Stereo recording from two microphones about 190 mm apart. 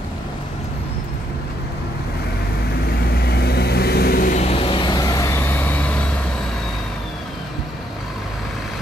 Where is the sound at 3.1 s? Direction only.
55° left (ahead or behind); by 6.1 s 10° left (ahead or behind).